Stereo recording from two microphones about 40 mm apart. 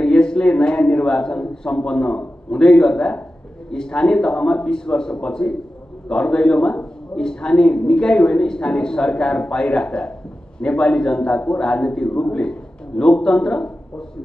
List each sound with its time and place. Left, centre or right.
0.0 s a man's voice: left